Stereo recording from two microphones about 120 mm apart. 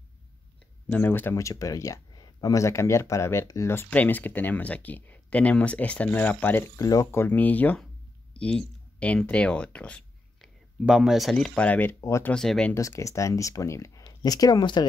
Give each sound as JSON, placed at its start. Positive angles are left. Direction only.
{"t": 0.8, "sound": "speech", "side_deg": 15}
{"t": 6.8, "sound": "speech", "side_deg": 25}
{"t": 10.9, "sound": "speech", "side_deg": -5}
{"t": 12.3, "sound": "speech", "side_deg": 5}
{"t": 12.7, "sound": "speech", "side_deg": 25}